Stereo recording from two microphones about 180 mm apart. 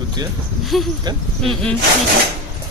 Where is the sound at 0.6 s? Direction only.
Centre (ahead or behind).